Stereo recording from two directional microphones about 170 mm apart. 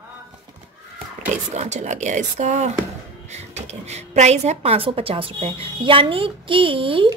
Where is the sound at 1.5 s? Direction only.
40° right (ahead or behind).